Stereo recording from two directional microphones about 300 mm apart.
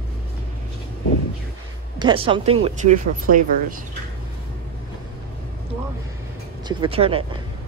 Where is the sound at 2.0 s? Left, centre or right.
Centre.